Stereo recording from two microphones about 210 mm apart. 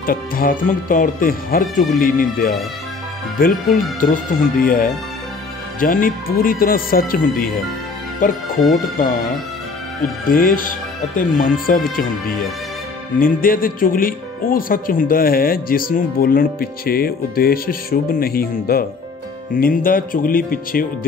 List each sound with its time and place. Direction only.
0.0 s speech: 45° left (ahead or behind)
10.3 s speech: 40° left (ahead or behind)